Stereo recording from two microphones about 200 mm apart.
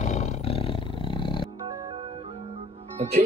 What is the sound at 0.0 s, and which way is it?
Roar, 35° left (ahead or behind).